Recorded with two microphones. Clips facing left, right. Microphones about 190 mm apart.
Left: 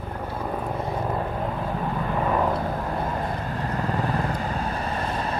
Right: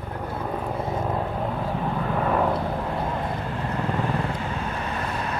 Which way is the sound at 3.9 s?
40° left (ahead or behind).